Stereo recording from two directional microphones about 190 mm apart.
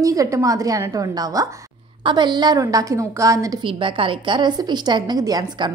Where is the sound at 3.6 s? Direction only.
25° right (ahead or behind).